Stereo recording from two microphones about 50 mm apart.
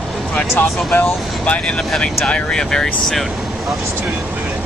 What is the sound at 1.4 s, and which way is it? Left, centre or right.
Speech, left.